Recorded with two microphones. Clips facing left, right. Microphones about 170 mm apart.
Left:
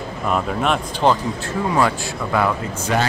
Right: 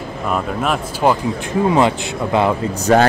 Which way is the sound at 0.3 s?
Centre (ahead or behind).